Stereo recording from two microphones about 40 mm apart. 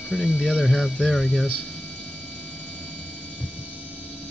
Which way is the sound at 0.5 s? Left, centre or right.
Centre.